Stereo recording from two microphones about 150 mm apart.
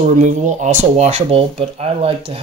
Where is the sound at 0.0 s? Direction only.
55° right (ahead or behind).